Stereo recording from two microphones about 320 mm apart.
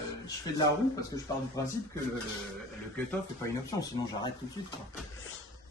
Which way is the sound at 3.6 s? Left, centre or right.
Centre.